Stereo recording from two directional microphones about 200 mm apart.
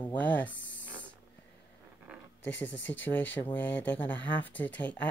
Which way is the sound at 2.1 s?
5° right (ahead or behind).